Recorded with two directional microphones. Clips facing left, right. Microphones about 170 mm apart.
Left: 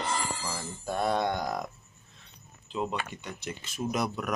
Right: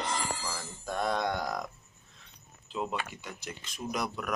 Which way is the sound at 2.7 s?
5° right (ahead or behind).